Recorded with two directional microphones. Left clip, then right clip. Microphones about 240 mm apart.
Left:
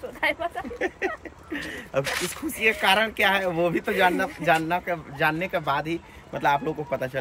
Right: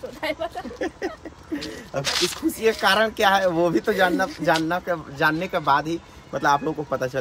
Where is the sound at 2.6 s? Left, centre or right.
Centre.